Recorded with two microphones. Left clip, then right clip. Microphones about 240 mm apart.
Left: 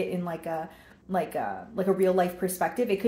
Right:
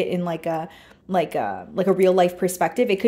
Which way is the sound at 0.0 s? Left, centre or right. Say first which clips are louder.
Right 7 dB; right.